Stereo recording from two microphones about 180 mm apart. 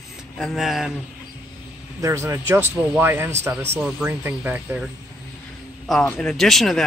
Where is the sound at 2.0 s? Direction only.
15° right (ahead or behind).